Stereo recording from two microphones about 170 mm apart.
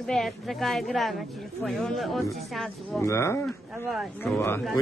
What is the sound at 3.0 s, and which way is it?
Speech, 15° left (ahead or behind).